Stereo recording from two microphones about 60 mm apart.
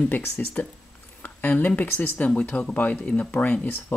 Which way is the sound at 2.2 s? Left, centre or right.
Left.